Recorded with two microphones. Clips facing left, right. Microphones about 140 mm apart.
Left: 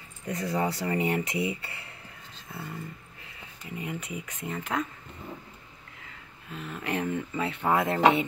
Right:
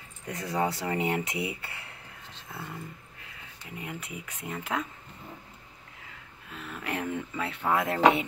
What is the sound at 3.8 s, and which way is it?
Speech, 5° right (ahead or behind).